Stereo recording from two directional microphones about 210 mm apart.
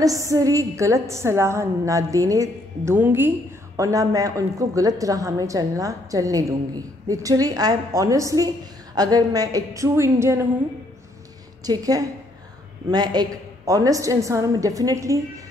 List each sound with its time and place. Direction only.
0.0 s a woman's voice: 15° right (ahead or behind)
11.6 s a woman's voice: 15° right (ahead or behind)